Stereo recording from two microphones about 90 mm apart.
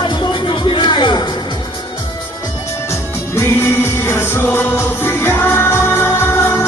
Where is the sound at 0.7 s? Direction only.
60° left (ahead or behind).